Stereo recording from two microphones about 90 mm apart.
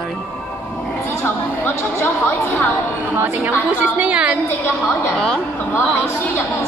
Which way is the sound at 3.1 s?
20° right (ahead or behind).